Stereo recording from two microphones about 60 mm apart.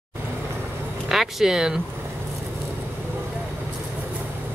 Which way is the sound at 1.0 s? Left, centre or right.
Centre.